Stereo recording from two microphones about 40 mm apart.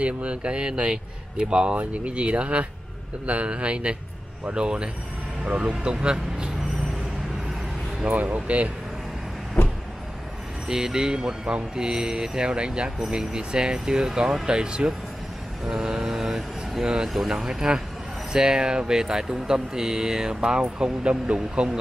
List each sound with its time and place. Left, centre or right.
0.0 s speech: right
5.4 s speech: right
5.7 s speech: right
8.0 s speech: right
10.7 s speech: centre
15.7 s vehicle: centre
16.8 s speech: centre